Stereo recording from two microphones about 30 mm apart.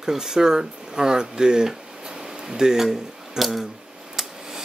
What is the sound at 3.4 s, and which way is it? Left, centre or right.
Speech, centre.